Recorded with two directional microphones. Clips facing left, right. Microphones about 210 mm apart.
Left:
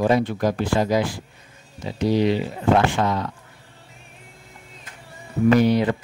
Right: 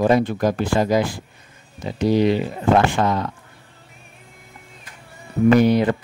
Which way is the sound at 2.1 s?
50° right (ahead or behind).